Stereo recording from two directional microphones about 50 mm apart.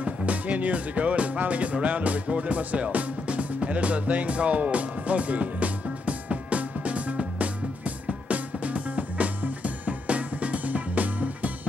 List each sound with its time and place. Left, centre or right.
0.0 s music: right